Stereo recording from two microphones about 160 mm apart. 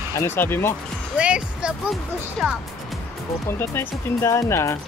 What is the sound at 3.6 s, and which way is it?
Speech, 15° left (ahead or behind).